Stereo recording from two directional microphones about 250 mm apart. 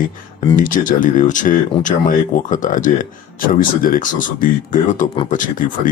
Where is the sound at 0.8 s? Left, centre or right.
Left.